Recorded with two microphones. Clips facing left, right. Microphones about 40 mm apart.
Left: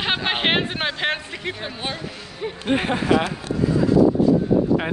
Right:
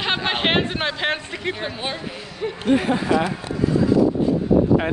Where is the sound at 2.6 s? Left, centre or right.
Left.